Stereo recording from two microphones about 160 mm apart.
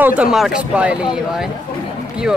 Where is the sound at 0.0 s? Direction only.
5° right (ahead or behind).